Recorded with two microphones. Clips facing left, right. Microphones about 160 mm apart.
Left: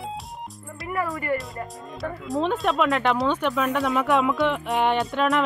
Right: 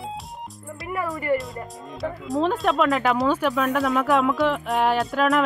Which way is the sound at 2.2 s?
Centre (ahead or behind).